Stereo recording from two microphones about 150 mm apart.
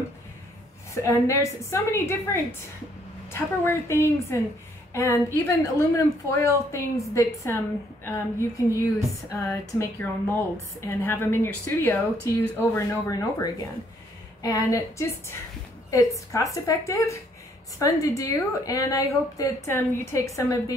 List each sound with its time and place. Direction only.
1.0 s a woman's voice: 20° left (ahead or behind)